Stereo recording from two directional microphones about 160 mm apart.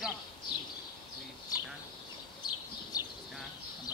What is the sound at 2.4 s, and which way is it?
Bird, 25° left (ahead or behind).